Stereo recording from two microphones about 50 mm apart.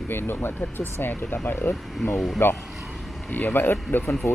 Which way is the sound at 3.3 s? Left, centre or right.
Left.